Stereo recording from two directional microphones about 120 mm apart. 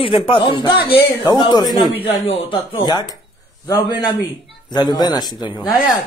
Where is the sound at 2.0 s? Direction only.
50° left (ahead or behind).